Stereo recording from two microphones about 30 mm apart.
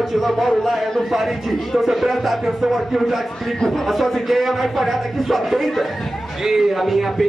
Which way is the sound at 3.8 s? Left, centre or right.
Centre.